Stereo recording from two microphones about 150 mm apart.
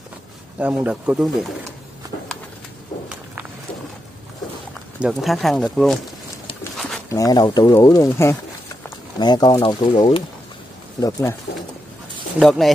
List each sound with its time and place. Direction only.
0.6 s speech: 10° right (ahead or behind)
5.0 s speech: centre (ahead or behind)
7.1 s speech: 25° left (ahead or behind)
11.0 s speech: 20° left (ahead or behind)
12.4 s speech: centre (ahead or behind)